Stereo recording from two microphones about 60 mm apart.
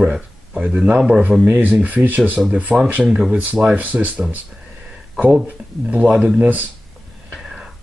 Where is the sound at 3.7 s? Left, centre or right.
Right.